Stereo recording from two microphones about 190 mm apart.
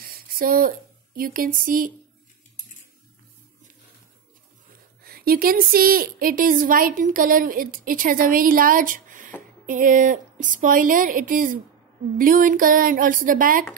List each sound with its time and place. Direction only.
0.0 s speech: 50° right (ahead or behind)
5.0 s a woman's voice: 50° right (ahead or behind)